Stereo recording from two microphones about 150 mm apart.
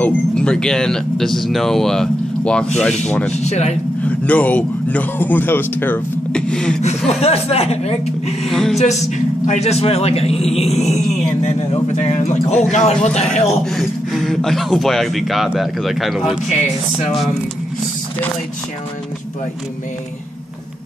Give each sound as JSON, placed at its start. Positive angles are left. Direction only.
{"t": 0.0, "sound": "speech", "side_deg": 5}
{"t": 3.3, "sound": "a man's voice", "side_deg": 45}
{"t": 4.3, "sound": "speech", "side_deg": 10}
{"t": 7.1, "sound": "a man's voice", "side_deg": 45}
{"t": 8.5, "sound": "speech", "side_deg": 0}
{"t": 8.7, "sound": "a man's voice", "side_deg": 50}
{"t": 13.7, "sound": "speech", "side_deg": 0}